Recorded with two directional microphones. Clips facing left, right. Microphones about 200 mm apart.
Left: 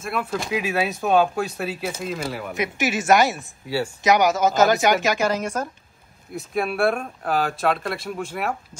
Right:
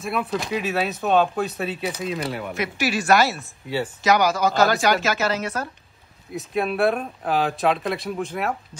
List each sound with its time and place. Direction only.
0.0 s speech: centre (ahead or behind)
2.5 s a woman's voice: 15° left (ahead or behind)
3.6 s speech: centre (ahead or behind)
4.0 s a woman's voice: 20° left (ahead or behind)
6.3 s speech: centre (ahead or behind)